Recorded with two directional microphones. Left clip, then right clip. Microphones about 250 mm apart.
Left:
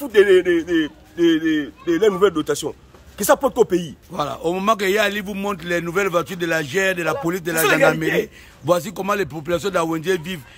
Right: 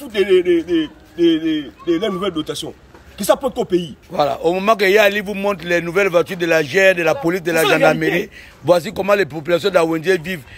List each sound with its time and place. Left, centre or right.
0.1 s a man's voice: centre
0.4 s a man's voice: left
0.7 s a man's voice: centre